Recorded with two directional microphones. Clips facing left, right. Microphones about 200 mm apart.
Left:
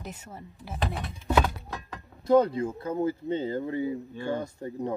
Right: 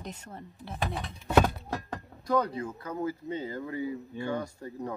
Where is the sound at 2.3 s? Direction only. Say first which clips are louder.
Left 7 dB; 25° left (ahead or behind).